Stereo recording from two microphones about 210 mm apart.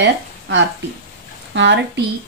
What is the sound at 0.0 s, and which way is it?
A woman's voice, 60° right (ahead or behind).